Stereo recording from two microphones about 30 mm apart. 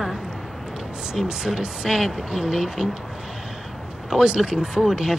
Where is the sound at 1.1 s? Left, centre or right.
Right.